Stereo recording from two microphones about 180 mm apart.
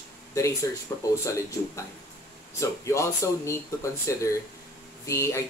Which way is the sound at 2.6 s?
15° left (ahead or behind).